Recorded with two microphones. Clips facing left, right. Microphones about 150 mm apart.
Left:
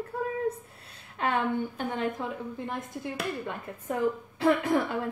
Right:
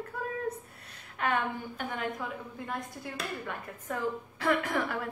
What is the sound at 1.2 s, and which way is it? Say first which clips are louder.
Speech: left 3 dB; 25° left (ahead or behind).